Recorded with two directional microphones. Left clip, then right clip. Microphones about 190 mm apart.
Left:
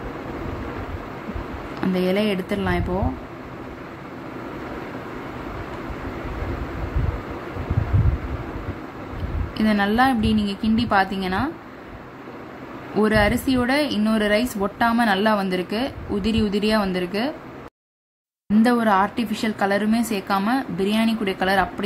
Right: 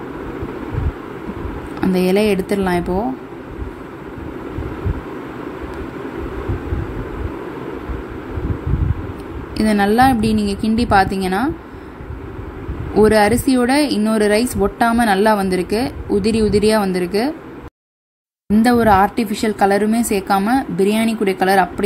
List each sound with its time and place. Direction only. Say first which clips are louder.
1.8 s a woman's voice: right 6 dB; 15° right (ahead or behind)
9.6 s a woman's voice: right 6 dB; 15° right (ahead or behind)
12.9 s a woman's voice: right 7 dB; 15° right (ahead or behind)
18.6 s a woman's voice: right 6 dB; 15° right (ahead or behind)